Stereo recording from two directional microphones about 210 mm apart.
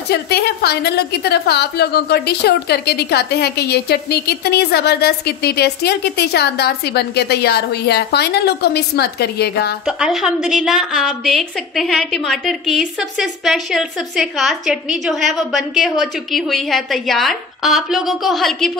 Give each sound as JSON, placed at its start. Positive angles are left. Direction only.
{"t": 0.1, "sound": "a woman's voice", "side_deg": 50}
{"t": 9.8, "sound": "a woman's voice", "side_deg": -5}